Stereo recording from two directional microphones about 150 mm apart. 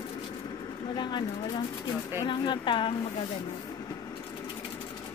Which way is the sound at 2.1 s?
30° left (ahead or behind).